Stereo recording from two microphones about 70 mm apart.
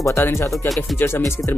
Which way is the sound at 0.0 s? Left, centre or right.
Left.